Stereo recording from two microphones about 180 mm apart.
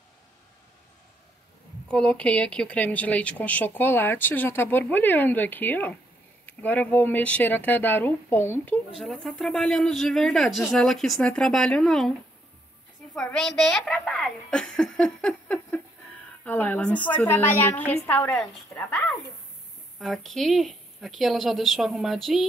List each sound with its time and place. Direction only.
1.9 s speech: 5° left (ahead or behind)
13.1 s a woman's voice: 5° left (ahead or behind)
20.0 s speech: centre (ahead or behind)